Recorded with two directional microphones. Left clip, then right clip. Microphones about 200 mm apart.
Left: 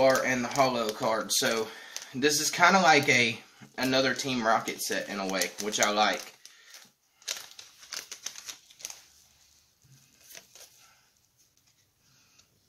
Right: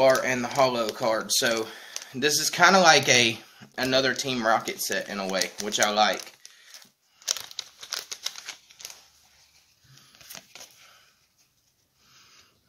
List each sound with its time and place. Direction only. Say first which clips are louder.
0.0 s speech: right 3 dB; 50° right (ahead or behind)
8.1 s typewriter: right 6 dB; 25° right (ahead or behind)
10.5 s a sound: right 7 dB; 5° right (ahead or behind)